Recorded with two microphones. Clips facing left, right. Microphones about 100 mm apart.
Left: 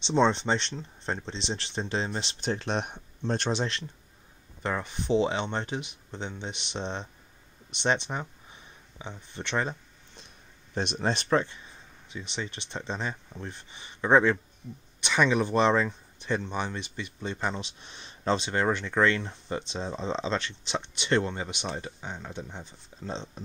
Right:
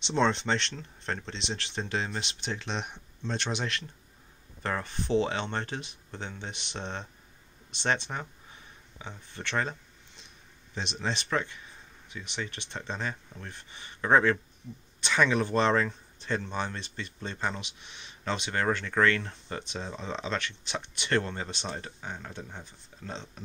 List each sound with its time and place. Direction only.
0.0 s speech: 15° left (ahead or behind)
2.4 s speech: 45° left (ahead or behind)
4.6 s speech: 15° left (ahead or behind)
10.7 s speech: 50° left (ahead or behind)
11.2 s speech: 30° left (ahead or behind)
17.6 s speech: 35° left (ahead or behind)